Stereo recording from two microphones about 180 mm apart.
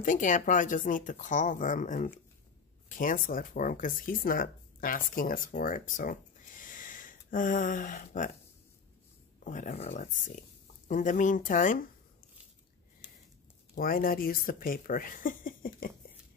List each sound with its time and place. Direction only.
0.0 s speech: 45° left (ahead or behind)
9.4 s speech: 45° left (ahead or behind)
13.7 s speech: 55° left (ahead or behind)